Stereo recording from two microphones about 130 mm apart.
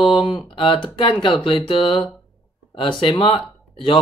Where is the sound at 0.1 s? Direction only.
40° left (ahead or behind).